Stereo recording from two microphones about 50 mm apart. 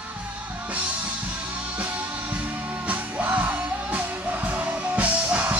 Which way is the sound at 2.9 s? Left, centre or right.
Right.